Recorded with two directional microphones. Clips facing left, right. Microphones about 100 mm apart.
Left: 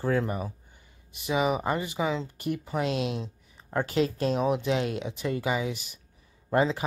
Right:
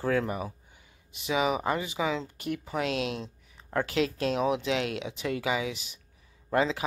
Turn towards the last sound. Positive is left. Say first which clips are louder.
# left 2 dB
turn(degrees=5)  # may be behind; listen again after turning